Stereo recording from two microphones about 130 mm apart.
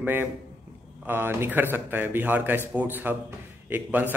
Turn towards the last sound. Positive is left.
turn(degrees=-15)  # may be behind; listen again after turning